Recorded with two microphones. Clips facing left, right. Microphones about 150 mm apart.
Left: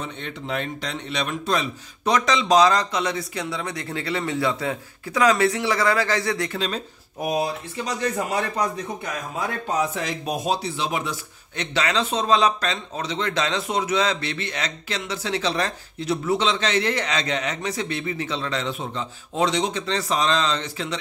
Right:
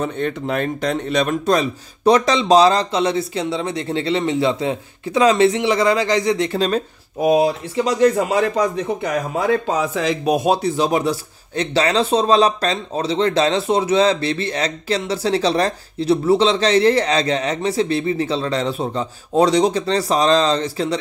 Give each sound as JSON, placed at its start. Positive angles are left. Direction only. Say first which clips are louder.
{"t": 0.0, "sound": "a man's voice", "louder": "right 10 dB", "side_deg": -45}
{"t": 7.7, "sound": "a man's voice", "louder": "right 13 dB", "side_deg": -90}